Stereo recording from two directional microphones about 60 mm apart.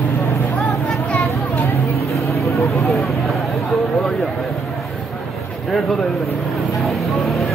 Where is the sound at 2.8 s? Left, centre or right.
Centre.